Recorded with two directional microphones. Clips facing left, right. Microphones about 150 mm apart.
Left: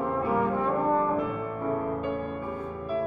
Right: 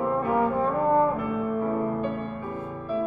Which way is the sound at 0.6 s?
35° right (ahead or behind).